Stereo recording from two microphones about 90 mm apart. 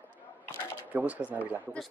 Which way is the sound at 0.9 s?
15° right (ahead or behind).